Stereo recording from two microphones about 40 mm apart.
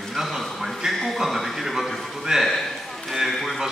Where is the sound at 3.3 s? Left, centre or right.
Centre.